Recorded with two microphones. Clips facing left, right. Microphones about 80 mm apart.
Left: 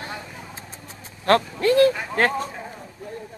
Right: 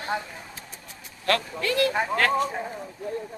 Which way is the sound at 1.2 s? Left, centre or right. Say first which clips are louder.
Left 7 dB; left.